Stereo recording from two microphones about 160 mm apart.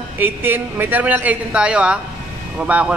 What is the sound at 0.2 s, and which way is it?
A man's voice, 10° right (ahead or behind).